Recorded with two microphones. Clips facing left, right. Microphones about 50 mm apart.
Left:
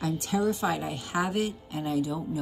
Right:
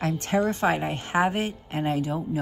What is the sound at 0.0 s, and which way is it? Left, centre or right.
A woman's voice, right.